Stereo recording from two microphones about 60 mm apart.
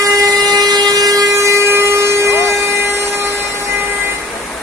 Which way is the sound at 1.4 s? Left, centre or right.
Right.